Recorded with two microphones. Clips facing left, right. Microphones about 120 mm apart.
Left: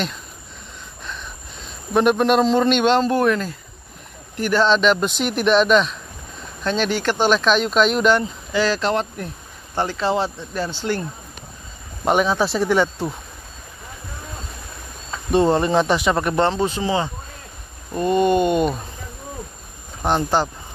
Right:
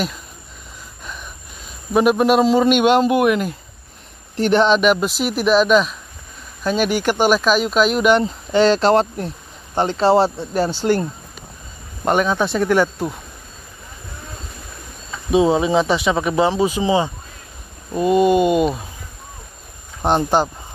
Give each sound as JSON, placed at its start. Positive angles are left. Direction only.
{"t": 2.0, "sound": "a man's voice", "side_deg": -5}
{"t": 4.4, "sound": "speech", "side_deg": -25}
{"t": 4.6, "sound": "a man's voice", "side_deg": -10}
{"t": 8.2, "sound": "speech", "side_deg": -30}
{"t": 12.0, "sound": "speech", "side_deg": 0}
{"t": 15.3, "sound": "a man's voice", "side_deg": 0}
{"t": 20.0, "sound": "a man's voice", "side_deg": -15}